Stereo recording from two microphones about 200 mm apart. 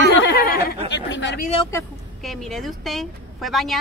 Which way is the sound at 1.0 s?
60° left (ahead or behind).